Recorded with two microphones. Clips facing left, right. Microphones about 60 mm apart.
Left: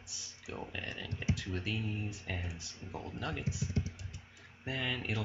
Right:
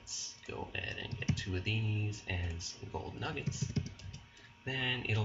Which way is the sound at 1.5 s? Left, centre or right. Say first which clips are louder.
Left 1 dB; centre.